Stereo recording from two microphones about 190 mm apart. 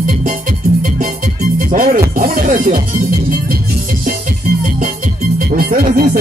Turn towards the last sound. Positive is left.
turn(degrees=-45)  # may be behind; listen again after turning